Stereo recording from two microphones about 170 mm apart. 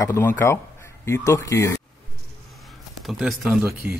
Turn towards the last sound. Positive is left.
turn(degrees=0)  # may be behind; listen again after turning